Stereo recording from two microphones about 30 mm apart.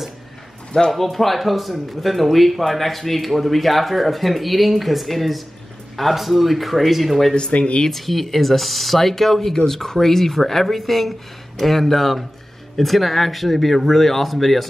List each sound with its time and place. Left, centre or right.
0.8 s speech: centre
7.5 s speech: left
7.9 s speech: centre